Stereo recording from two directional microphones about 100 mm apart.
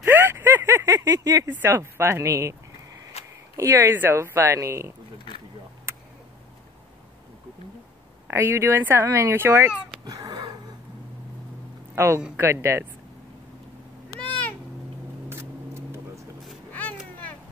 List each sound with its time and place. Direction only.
0.0 s a sound: 25° right (ahead or behind)
1.5 s speech: 25° right (ahead or behind)
3.1 s a sound: 90° left
3.5 s speech: 30° right (ahead or behind)
8.3 s speech: 25° right (ahead or behind)
10.0 s wheeze: 40° right (ahead or behind)
11.9 s speech: 30° right (ahead or behind)
15.2 s vehicle: 25° right (ahead or behind)